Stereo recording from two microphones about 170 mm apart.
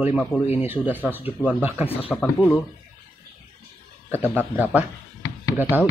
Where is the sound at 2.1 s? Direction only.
10° left (ahead or behind).